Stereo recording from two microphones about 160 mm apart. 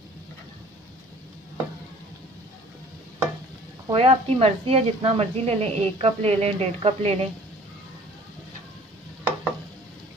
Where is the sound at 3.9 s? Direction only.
35° right (ahead or behind).